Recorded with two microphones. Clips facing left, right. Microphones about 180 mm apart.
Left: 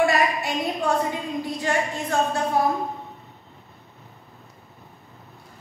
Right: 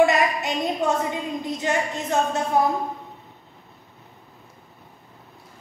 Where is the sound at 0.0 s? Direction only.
20° right (ahead or behind).